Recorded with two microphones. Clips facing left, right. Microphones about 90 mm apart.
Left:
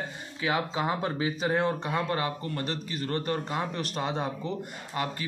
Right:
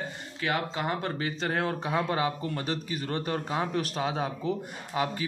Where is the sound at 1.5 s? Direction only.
Centre (ahead or behind).